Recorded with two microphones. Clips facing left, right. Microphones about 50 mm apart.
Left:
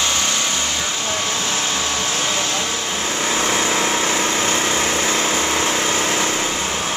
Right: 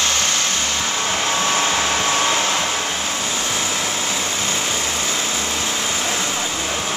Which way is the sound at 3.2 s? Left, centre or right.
Left.